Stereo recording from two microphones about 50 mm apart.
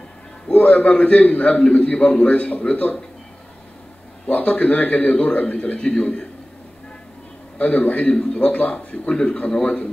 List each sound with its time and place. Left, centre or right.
0.5 s a man's voice: left
2.0 s speech: centre
2.2 s a man's voice: left
4.3 s a man's voice: left
5.8 s a man's voice: centre
7.5 s a man's voice: left
8.1 s speech: centre
8.4 s a man's voice: left